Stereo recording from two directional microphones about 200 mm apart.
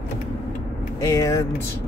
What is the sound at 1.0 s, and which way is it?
Speech, 15° left (ahead or behind).